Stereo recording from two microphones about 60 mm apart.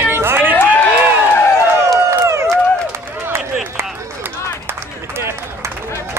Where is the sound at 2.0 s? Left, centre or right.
Right.